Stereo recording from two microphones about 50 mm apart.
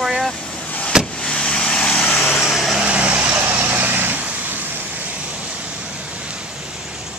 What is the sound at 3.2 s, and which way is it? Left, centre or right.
Vehicle, right.